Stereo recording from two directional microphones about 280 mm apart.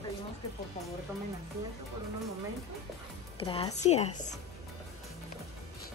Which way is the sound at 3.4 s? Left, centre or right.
Centre.